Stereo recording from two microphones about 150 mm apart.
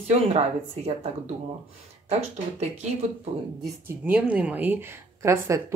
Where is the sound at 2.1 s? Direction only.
45° right (ahead or behind).